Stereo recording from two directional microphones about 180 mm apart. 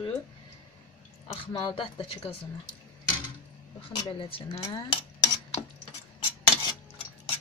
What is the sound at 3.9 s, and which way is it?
Speech, 30° left (ahead or behind).